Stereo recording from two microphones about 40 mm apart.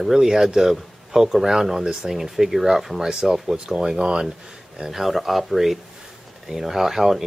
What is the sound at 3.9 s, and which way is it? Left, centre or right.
Speech, centre.